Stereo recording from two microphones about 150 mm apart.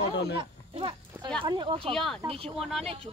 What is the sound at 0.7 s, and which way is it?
Speech, 35° right (ahead or behind).